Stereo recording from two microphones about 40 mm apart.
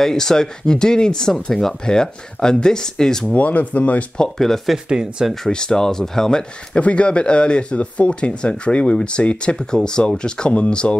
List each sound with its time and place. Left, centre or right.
0.0 s speech: centre
3.3 s speech: left
4.7 s speech: centre
5.5 s speech: centre
6.7 s speech: left